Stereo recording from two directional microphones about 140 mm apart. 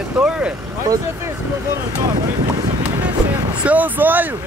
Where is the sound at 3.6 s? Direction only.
10° right (ahead or behind).